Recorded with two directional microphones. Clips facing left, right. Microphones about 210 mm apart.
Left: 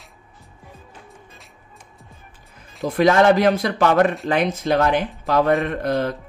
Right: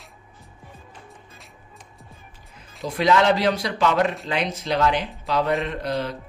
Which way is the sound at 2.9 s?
50° left (ahead or behind).